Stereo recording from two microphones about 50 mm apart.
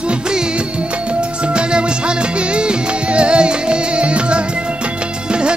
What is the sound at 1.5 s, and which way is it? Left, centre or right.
Music, right.